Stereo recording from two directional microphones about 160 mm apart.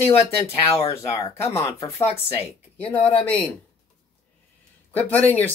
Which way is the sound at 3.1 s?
10° left (ahead or behind).